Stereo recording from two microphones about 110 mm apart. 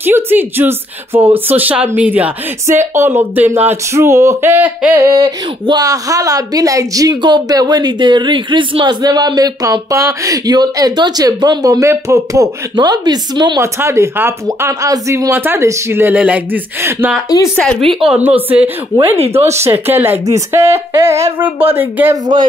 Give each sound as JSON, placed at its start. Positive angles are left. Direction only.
{"t": 0.0, "sound": "a woman's voice", "side_deg": -20}
{"t": 5.1, "sound": "speech", "side_deg": -35}
{"t": 12.7, "sound": "speech", "side_deg": -40}
{"t": 13.6, "sound": "speech", "side_deg": -25}
{"t": 17.6, "sound": "speech", "side_deg": 5}
{"t": 18.1, "sound": "a woman's voice", "side_deg": -15}
{"t": 18.9, "sound": "speech", "side_deg": 25}
{"t": 19.5, "sound": "speech", "side_deg": -20}